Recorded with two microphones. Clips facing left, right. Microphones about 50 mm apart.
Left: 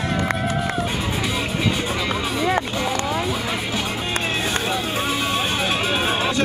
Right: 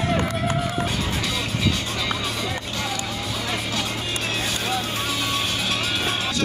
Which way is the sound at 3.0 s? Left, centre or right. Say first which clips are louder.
Left 5 dB; centre.